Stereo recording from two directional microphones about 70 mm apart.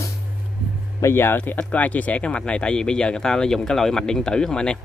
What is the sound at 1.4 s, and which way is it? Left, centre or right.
Speech, centre.